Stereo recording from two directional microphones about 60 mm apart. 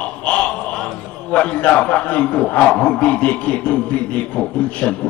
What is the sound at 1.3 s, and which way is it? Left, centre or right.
Speech, left.